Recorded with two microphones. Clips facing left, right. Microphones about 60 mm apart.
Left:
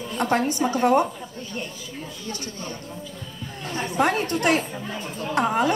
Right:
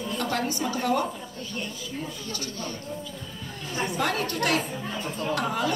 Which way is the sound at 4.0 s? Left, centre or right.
Left.